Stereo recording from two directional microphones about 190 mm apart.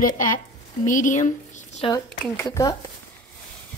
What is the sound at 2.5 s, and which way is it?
Speech, 15° left (ahead or behind).